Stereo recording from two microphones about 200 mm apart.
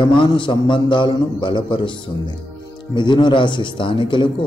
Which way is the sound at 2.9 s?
25° left (ahead or behind).